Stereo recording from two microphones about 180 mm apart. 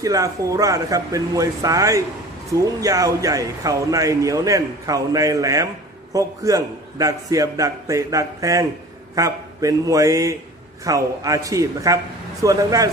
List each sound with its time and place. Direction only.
0.0 s speech: 20° right (ahead or behind)